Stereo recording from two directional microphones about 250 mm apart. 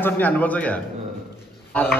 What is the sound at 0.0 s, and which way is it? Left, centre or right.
A man's voice, centre.